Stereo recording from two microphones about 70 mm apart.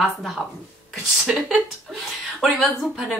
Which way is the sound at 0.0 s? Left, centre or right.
Centre.